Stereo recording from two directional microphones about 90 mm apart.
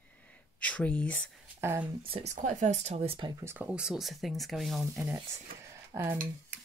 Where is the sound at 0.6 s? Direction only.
15° left (ahead or behind).